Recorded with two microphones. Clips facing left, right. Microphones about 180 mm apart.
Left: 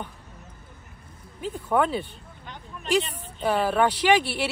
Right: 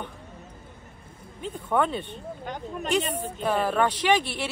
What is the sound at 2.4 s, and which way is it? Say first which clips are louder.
Speech: right 8 dB; 45° right (ahead or behind).